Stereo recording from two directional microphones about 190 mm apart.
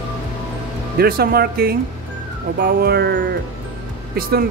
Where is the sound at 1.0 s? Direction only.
55° right (ahead or behind).